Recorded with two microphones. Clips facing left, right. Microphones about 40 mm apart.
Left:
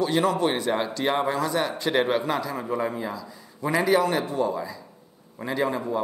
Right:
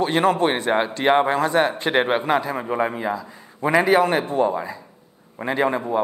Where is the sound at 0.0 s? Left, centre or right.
Right.